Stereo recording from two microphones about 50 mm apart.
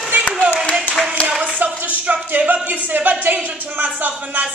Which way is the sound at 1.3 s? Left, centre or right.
Right.